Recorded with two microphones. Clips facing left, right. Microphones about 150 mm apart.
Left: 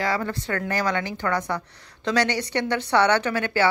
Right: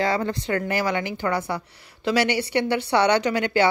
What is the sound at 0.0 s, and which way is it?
Speech, 25° right (ahead or behind).